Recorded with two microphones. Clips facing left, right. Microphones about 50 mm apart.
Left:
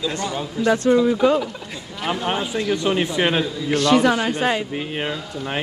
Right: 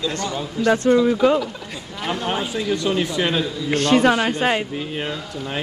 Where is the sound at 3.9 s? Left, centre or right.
Right.